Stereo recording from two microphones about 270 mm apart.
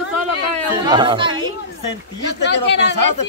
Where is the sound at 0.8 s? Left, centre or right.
Centre.